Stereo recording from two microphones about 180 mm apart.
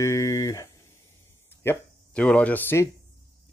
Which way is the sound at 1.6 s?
10° left (ahead or behind).